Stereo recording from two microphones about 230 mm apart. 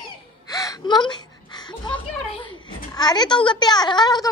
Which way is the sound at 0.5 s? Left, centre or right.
Centre.